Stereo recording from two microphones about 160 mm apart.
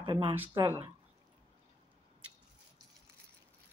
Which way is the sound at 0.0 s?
30° right (ahead or behind).